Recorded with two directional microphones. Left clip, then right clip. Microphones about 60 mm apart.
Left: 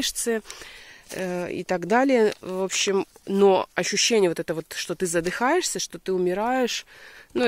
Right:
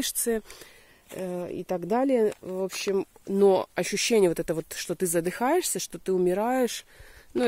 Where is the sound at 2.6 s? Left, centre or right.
Left.